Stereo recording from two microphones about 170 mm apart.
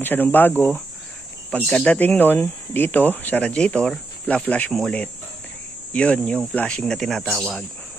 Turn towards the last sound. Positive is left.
turn(degrees=5)  # may be behind; listen again after turning